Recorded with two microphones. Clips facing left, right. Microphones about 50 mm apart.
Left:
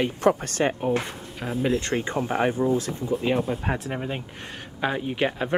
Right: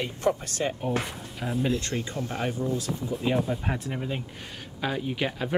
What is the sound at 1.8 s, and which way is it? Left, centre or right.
Speech, left.